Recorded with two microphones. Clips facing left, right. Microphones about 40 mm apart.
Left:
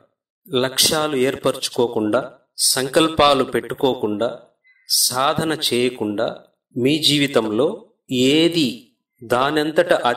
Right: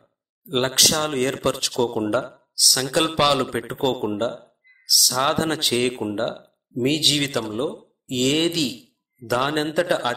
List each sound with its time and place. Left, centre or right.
0.0 s speech: centre